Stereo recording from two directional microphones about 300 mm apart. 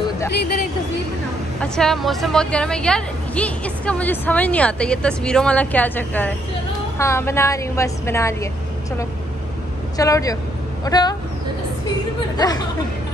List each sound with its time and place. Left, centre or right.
0.3 s speech: left
1.6 s a woman's voice: centre
9.9 s a woman's voice: centre
12.4 s a woman's voice: centre